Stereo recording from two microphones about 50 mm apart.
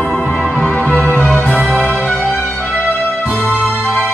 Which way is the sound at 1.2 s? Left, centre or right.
Centre.